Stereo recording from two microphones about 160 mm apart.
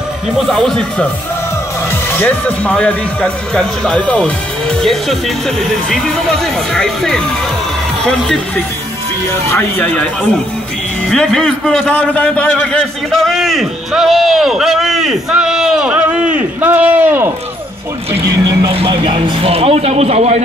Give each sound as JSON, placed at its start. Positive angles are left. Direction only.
{"t": 0.5, "sound": "a man's voice", "side_deg": 0}
{"t": 2.1, "sound": "speech", "side_deg": 10}
{"t": 5.9, "sound": "a man's voice", "side_deg": 5}
{"t": 18.8, "sound": "speech", "side_deg": -30}